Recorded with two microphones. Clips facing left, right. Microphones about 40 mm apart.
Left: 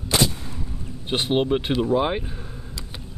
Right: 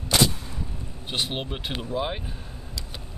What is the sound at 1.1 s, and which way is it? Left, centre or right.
Speech, centre.